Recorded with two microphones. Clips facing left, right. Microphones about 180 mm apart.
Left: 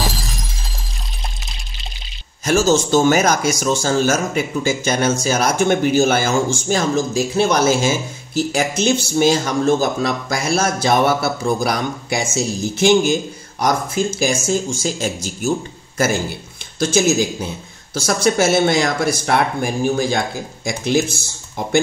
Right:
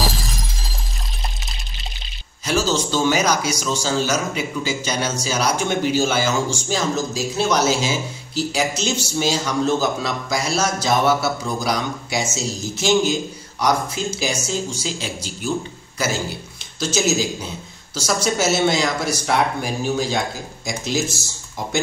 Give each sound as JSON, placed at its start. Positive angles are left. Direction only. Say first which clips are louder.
{"t": 0.0, "sound": "shatter", "louder": "even", "side_deg": 0}
{"t": 2.4, "sound": "speech", "louder": "left 5 dB", "side_deg": 45}